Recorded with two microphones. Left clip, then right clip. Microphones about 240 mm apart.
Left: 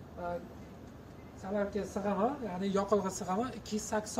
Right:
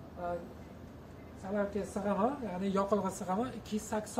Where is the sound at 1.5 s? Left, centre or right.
Centre.